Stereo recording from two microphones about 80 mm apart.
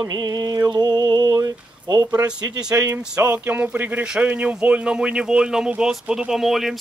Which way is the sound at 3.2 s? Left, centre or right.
Centre.